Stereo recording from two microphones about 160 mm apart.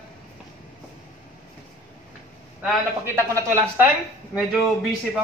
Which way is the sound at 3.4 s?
15° right (ahead or behind).